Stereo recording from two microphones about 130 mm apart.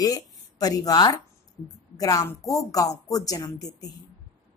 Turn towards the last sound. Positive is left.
turn(degrees=30)  # may be behind; listen again after turning